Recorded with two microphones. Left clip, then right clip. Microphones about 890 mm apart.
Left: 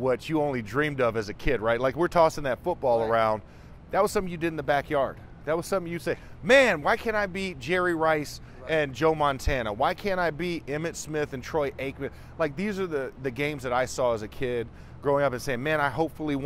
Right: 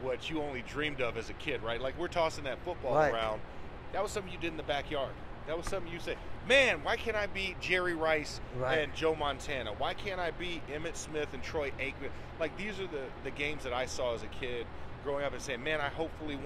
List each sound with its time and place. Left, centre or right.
0.0 s speech: left
3.9 s speech: left